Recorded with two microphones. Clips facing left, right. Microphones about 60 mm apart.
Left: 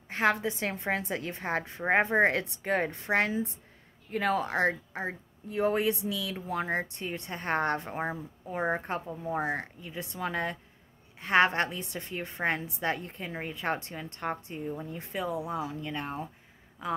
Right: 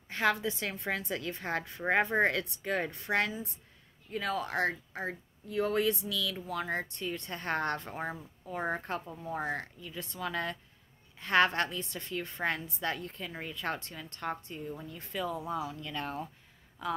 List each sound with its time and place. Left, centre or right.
0.1 s a woman's voice: left
15.6 s a woman's voice: left
15.9 s speech: left